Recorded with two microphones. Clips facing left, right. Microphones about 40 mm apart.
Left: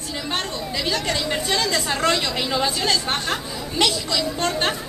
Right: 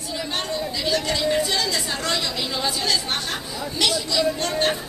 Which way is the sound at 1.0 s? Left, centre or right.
Left.